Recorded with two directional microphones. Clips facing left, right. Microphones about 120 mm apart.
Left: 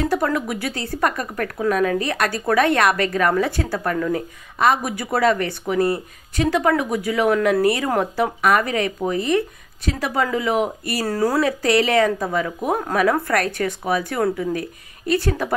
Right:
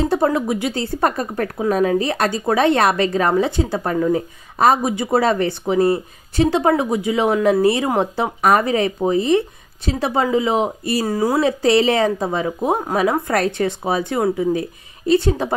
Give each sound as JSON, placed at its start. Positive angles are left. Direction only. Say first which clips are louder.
{"t": 0.0, "sound": "speech", "louder": "right 3 dB", "side_deg": -25}
{"t": 11.1, "sound": "speech", "louder": "right 1 dB", "side_deg": -15}